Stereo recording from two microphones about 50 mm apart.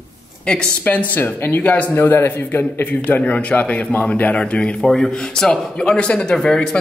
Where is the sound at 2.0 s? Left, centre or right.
Left.